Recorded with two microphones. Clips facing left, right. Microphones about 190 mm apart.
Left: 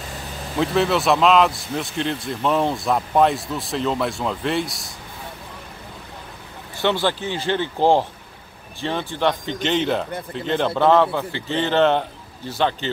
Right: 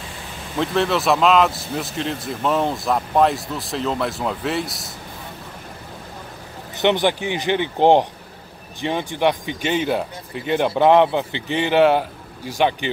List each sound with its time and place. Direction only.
0.6 s speech: centre (ahead or behind)
6.8 s a man's voice: 20° right (ahead or behind)